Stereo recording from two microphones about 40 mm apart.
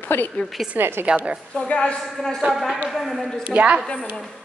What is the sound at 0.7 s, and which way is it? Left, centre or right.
Speech, right.